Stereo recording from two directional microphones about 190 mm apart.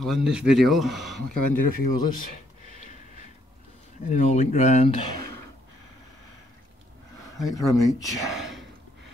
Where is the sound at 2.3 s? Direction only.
40° left (ahead or behind).